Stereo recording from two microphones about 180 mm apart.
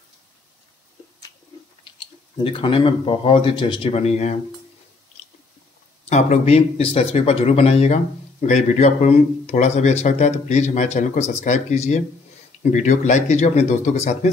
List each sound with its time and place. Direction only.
2.3 s speech: 25° left (ahead or behind)
6.0 s speech: 40° left (ahead or behind)